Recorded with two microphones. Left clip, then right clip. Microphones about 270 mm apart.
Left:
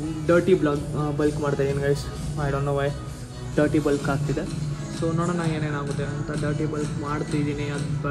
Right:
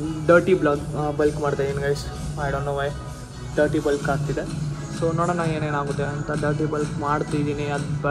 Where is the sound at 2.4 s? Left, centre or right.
Left.